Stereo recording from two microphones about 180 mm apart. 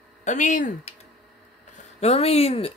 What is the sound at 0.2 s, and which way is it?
Speech, 45° left (ahead or behind).